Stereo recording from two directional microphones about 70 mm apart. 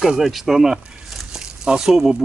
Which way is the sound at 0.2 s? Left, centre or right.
Centre.